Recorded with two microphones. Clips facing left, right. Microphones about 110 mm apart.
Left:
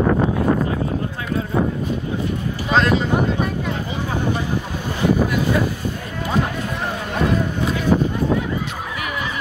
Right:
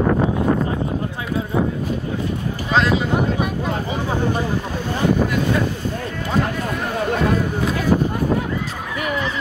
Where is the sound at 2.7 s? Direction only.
Centre (ahead or behind).